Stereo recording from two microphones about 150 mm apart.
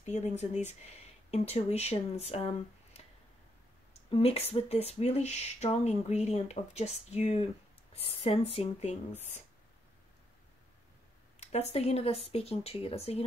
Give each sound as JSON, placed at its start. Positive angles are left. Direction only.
{"t": 0.0, "sound": "speech", "side_deg": 50}
{"t": 4.1, "sound": "a woman's voice", "side_deg": 40}
{"t": 11.3, "sound": "speech", "side_deg": 45}